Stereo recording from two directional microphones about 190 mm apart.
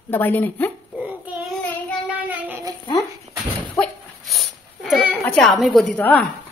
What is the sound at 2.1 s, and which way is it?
Child singing, 10° right (ahead or behind).